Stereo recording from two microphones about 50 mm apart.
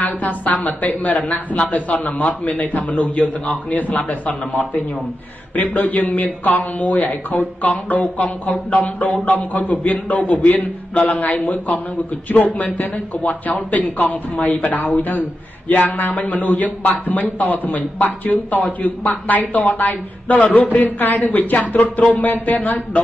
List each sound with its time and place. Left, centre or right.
0.0 s a sound: left
0.8 s a man's voice: left
5.6 s a man's voice: left